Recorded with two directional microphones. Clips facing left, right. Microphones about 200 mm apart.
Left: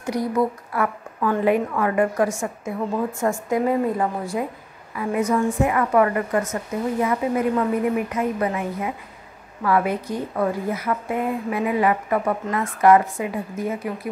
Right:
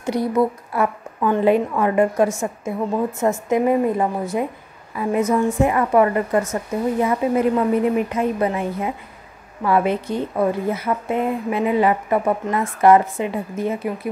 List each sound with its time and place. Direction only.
0.0 s a woman's voice: 30° right (ahead or behind)